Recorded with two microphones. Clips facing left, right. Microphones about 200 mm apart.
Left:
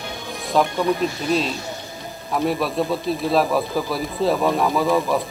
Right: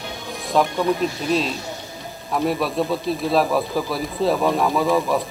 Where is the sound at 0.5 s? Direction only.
Centre (ahead or behind).